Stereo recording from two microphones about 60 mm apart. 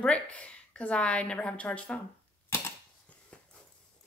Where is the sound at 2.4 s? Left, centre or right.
Left.